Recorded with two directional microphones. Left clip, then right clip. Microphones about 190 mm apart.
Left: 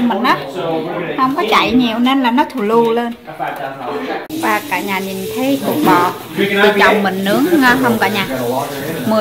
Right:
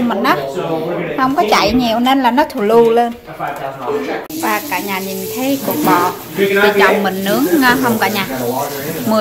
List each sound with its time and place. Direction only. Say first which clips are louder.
0.1 s a sound: even; 15° right (ahead or behind)
1.2 s a woman's voice: right 1 dB; 15° right (ahead or behind)
5.4 s a woman's voice: left 2 dB; centre (ahead or behind)